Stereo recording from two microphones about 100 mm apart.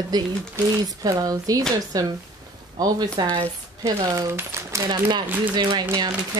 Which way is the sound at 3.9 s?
35° right (ahead or behind).